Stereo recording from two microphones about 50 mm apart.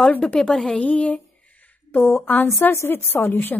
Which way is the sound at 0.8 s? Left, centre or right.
Left.